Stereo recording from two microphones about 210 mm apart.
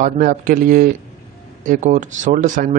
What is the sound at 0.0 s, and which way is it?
Speech, 40° right (ahead or behind).